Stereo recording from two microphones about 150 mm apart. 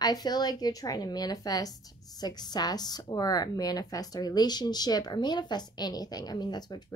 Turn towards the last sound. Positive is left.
turn(degrees=25)  # may be behind; listen again after turning